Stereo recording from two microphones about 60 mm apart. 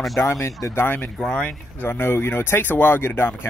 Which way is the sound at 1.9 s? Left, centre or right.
Left.